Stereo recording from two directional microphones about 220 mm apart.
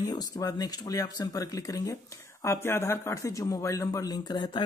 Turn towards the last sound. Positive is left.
turn(degrees=20)  # may be behind; listen again after turning